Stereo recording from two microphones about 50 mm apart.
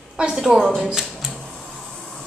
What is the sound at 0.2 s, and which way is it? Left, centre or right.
Speech, centre.